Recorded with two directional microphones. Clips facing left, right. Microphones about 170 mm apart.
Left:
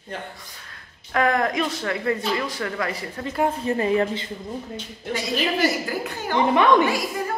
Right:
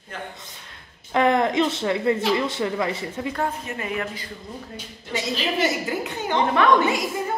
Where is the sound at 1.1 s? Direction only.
25° right (ahead or behind).